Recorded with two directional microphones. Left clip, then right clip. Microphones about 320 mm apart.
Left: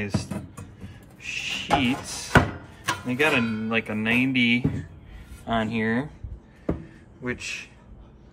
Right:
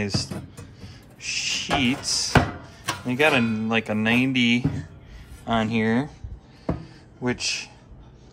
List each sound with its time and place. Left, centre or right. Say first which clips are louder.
0.0 s speech: right 3 dB; centre
7.2 s a man's voice: right 5 dB; centre